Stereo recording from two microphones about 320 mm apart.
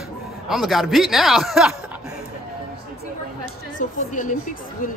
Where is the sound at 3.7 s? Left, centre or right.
Left.